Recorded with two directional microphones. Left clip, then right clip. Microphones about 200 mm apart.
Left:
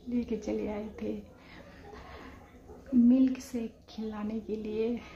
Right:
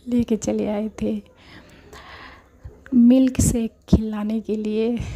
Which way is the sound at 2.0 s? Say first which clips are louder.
Right 10 dB; 50° right (ahead or behind).